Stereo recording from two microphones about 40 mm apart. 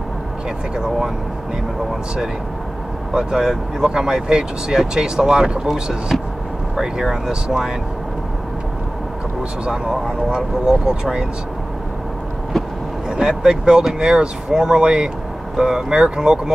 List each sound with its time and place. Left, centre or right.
3.2 s speech: centre
9.7 s speech: centre
13.1 s speech: centre